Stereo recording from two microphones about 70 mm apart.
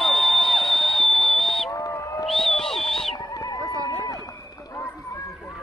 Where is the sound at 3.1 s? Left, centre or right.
Left.